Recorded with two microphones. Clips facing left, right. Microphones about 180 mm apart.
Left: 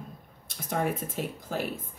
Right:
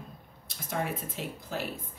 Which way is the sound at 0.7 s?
50° left (ahead or behind).